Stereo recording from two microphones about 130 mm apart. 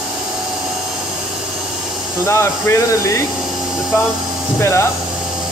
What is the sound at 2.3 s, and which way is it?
Speech, 20° left (ahead or behind).